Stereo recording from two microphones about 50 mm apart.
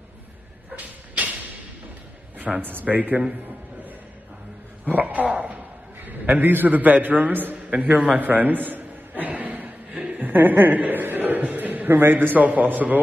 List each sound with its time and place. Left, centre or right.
0.7 s a sound: right
2.6 s a man's voice: right
4.8 s speech: right
6.0 s a man's voice: right
7.9 s a sound: right
10.2 s a man's voice: right